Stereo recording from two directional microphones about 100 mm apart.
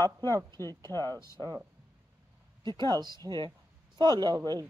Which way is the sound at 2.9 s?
45° right (ahead or behind).